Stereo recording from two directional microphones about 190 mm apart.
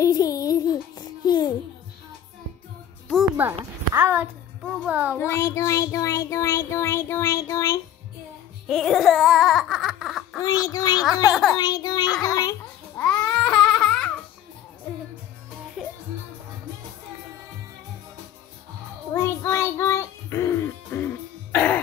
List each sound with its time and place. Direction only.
0.0 s music: 20° left (ahead or behind)
3.3 s a woman's voice: 10° right (ahead or behind)
5.1 s child singing: 15° left (ahead or behind)
8.6 s a sound: centre (ahead or behind)
10.4 s speech: 20° left (ahead or behind)
12.2 s babbling: 20° left (ahead or behind)
13.0 s babbling: 5° left (ahead or behind)
19.1 s music: 15° left (ahead or behind)